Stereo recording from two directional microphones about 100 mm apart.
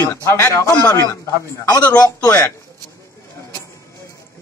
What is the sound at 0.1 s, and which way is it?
A man's voice, 25° left (ahead or behind).